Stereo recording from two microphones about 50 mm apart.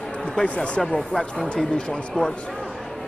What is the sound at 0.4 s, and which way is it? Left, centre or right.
Speech, centre.